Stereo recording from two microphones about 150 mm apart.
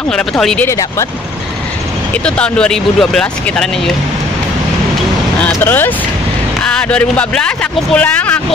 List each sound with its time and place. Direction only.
0.1 s speech: 5° left (ahead or behind)
0.7 s speech: 20° left (ahead or behind)
2.2 s speech: 5° left (ahead or behind)
5.4 s speech: 10° left (ahead or behind)